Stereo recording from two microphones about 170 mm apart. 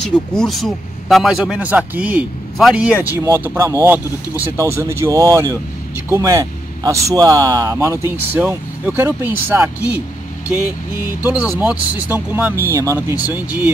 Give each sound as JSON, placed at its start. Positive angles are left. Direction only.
{"t": 0.0, "sound": "a man's voice", "side_deg": 5}
{"t": 11.5, "sound": "a man's voice", "side_deg": -10}